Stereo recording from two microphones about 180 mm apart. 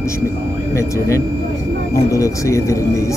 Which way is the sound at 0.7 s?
15° left (ahead or behind).